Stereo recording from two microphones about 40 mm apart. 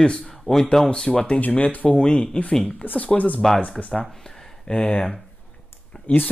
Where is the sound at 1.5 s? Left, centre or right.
Left.